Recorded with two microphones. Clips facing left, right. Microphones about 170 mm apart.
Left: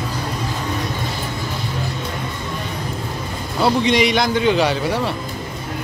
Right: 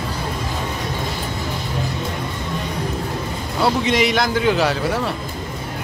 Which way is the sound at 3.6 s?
Centre (ahead or behind).